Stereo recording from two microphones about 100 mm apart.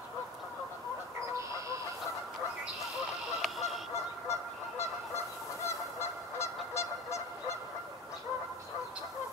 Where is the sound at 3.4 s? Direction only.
Centre (ahead or behind).